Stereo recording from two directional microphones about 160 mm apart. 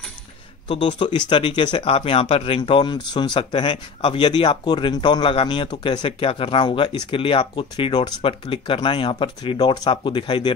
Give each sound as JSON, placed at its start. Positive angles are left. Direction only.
{"t": 0.7, "sound": "speech", "side_deg": 30}